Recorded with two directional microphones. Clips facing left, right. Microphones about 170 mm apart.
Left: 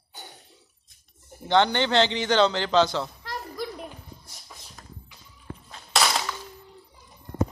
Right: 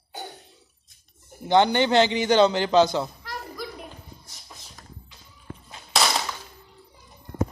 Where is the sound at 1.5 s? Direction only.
10° right (ahead or behind).